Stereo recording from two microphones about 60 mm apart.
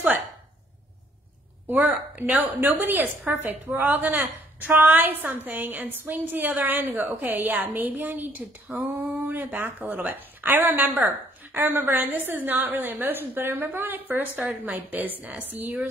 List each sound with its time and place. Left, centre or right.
2.1 s a woman's voice: right